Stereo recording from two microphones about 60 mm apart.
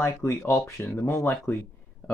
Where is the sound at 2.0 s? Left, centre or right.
Left.